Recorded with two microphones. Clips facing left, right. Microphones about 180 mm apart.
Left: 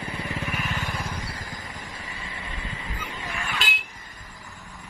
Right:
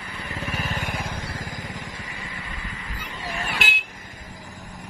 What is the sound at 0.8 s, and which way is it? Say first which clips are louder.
Vehicle: right 1 dB; 50° right (ahead or behind).